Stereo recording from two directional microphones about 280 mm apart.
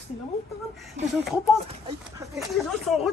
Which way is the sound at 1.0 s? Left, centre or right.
Right.